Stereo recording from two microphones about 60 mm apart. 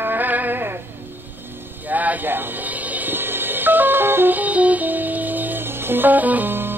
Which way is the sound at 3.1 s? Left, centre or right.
Right.